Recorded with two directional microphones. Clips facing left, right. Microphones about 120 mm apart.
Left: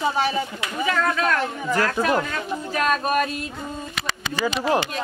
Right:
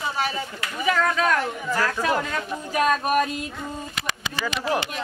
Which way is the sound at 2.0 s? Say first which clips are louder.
Left 2 dB; 15° left (ahead or behind).